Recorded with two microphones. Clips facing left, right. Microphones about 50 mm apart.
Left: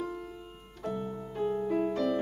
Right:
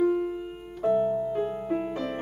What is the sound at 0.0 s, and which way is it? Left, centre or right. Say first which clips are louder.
Piano: right 13 dB; right.